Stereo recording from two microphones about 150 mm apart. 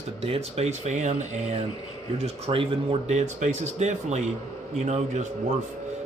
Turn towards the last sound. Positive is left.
turn(degrees=-50)  # may be behind; listen again after turning